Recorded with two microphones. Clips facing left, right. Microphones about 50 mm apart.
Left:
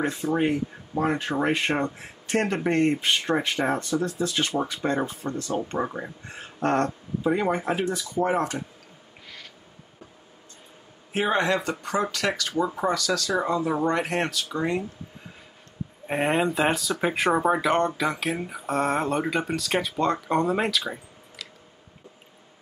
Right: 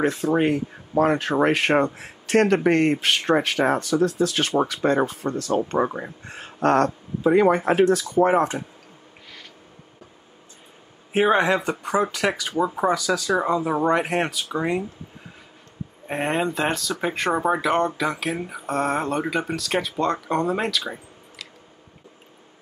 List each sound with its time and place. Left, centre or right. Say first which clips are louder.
0.0 s speech: right 4 dB; right
8.2 s speech: right 5 dB; right
11.1 s speech: right 5 dB; centre
16.1 s speech: even; centre